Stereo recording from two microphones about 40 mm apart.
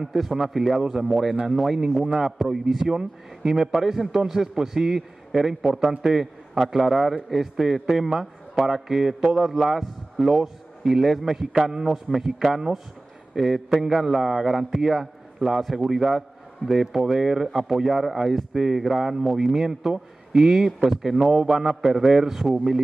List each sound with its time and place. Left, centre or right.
0.0 s a man's voice: centre
13.4 s a man's voice: centre